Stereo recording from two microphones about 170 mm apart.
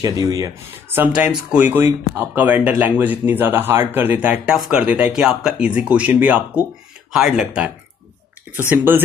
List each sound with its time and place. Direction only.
0.0 s speech: 20° right (ahead or behind)
0.9 s speech: 10° right (ahead or behind)